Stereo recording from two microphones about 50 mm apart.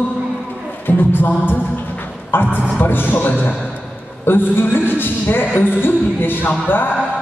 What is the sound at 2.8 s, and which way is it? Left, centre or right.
Music, left.